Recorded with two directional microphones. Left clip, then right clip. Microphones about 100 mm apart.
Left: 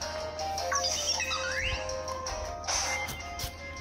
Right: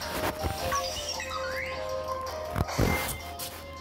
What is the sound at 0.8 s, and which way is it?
Music, 75° left (ahead or behind).